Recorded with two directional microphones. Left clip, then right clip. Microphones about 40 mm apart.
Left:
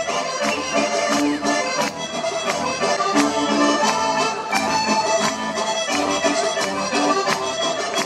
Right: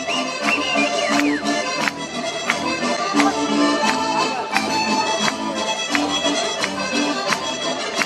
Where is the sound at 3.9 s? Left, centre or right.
Centre.